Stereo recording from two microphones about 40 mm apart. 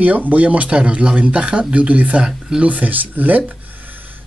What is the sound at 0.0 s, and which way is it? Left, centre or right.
A man's voice, right.